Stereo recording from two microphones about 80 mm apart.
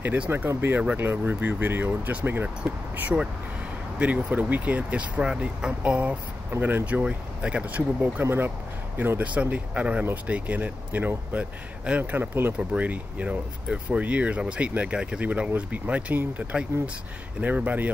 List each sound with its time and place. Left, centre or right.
0.3 s speech: right